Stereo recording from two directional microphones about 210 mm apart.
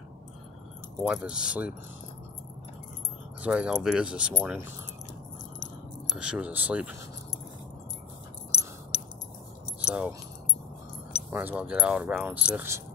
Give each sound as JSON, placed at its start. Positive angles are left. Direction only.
{"t": 0.9, "sound": "speech", "side_deg": 0}
{"t": 3.4, "sound": "speech", "side_deg": -5}
{"t": 6.1, "sound": "speech", "side_deg": -5}
{"t": 8.9, "sound": "a sound", "side_deg": 30}
{"t": 9.8, "sound": "speech", "side_deg": -5}
{"t": 11.2, "sound": "speech", "side_deg": -10}